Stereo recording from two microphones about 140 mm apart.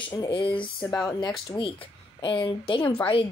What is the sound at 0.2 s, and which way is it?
Speech, 35° left (ahead or behind).